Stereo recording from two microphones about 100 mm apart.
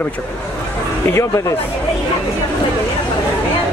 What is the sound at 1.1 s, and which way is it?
Speech, 30° left (ahead or behind).